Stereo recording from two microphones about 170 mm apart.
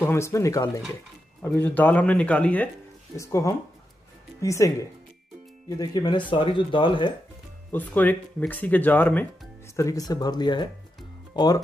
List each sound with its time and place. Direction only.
0.0 s speech: 15° left (ahead or behind)
7.7 s speech: 10° left (ahead or behind)